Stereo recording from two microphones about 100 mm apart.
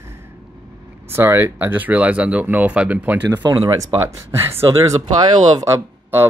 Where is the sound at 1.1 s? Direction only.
20° right (ahead or behind).